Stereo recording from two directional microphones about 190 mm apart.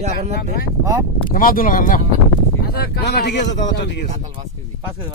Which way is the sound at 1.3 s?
45° left (ahead or behind).